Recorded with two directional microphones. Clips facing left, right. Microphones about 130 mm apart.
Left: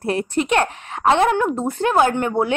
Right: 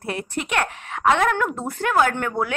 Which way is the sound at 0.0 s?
35° left (ahead or behind).